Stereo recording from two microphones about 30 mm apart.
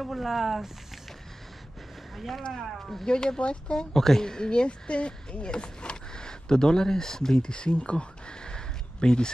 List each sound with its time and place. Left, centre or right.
0.0 s speech: centre
2.1 s speech: centre
3.1 s speech: left
3.9 s speech: centre
4.5 s speech: left